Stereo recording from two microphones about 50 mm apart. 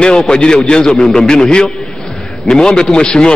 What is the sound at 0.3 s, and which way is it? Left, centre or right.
A man's voice, centre.